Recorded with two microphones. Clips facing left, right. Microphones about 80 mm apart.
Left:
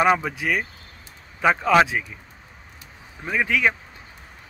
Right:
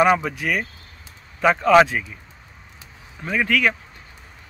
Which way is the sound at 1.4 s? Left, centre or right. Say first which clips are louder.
Right 3 dB; centre.